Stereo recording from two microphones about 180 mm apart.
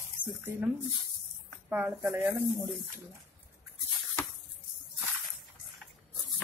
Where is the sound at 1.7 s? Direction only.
15° right (ahead or behind).